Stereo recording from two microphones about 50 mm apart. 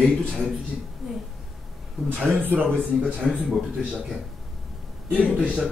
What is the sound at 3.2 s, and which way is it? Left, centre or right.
Speech, centre.